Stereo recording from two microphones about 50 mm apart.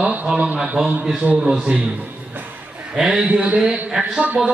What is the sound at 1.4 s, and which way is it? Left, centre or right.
Speech, centre.